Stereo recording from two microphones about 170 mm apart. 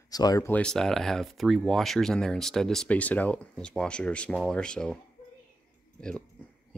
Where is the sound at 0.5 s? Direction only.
5° left (ahead or behind).